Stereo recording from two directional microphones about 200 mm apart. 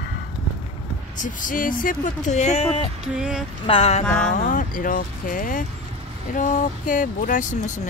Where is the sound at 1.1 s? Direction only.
40° left (ahead or behind).